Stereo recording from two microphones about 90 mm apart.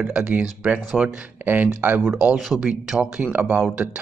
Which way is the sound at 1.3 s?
20° right (ahead or behind).